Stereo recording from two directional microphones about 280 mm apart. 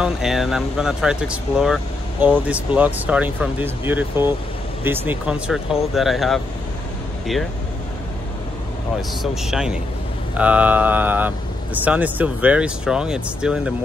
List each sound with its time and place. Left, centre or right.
0.0 s speech: centre
9.2 s speech: centre